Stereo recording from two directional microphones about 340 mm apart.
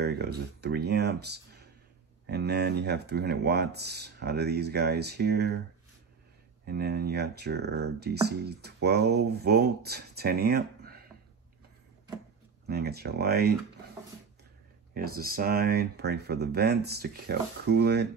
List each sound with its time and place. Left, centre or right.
0.0 s speech: right
6.6 s speech: right
12.6 s speech: right
15.0 s speech: right